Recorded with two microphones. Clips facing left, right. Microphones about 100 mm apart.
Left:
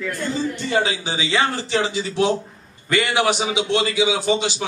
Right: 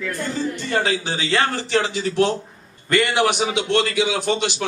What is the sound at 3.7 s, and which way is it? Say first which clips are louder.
Speech: even; 65° right (ahead or behind).